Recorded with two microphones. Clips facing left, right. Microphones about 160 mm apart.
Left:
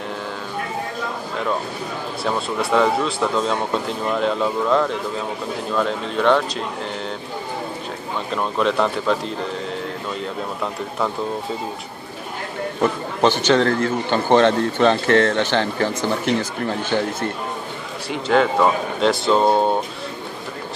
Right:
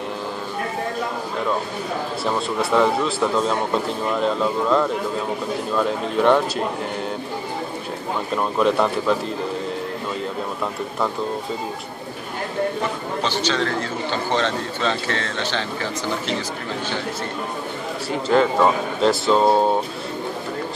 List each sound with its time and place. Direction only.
2.6 s a man's voice: centre (ahead or behind)
8.4 s a man's voice: 5° right (ahead or behind)
13.2 s a man's voice: 50° left (ahead or behind)
18.1 s a man's voice: centre (ahead or behind)